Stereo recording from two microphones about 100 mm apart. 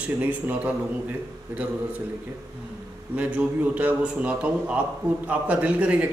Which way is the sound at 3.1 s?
15° right (ahead or behind).